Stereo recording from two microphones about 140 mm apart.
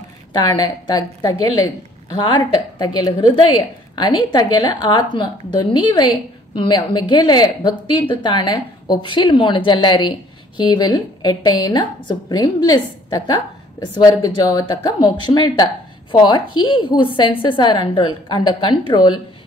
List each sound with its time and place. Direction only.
0.4 s a woman's voice: 30° left (ahead or behind)